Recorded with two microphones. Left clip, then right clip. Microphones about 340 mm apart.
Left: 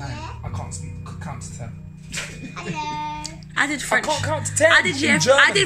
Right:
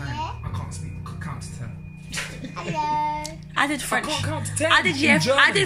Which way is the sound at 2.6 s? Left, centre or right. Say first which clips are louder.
Right 4 dB; centre.